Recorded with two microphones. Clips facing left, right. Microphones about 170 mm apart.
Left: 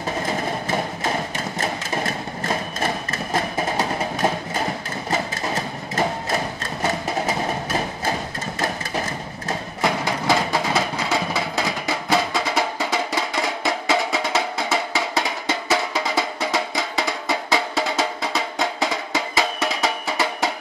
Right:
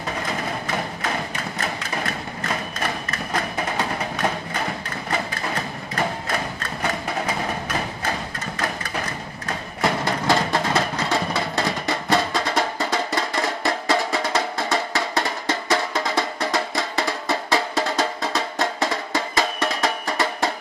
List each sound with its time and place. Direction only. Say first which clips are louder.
0.2 s music: left 3 dB; 25° left (ahead or behind)
9.8 s music: right 1 dB; centre (ahead or behind)